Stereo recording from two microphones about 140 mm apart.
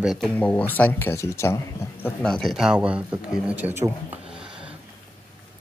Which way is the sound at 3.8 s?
10° right (ahead or behind).